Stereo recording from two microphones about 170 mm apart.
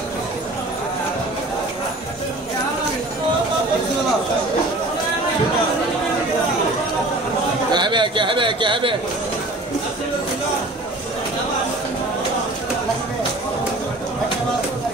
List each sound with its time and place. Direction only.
7.7 s speech: 25° right (ahead or behind)